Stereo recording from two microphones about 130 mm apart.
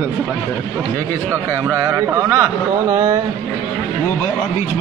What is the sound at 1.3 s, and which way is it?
A man's voice, 20° right (ahead or behind).